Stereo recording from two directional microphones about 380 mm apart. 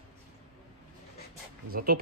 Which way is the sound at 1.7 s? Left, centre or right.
Right.